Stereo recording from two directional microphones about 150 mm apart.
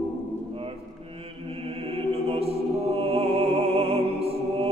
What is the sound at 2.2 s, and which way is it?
Music, 40° right (ahead or behind).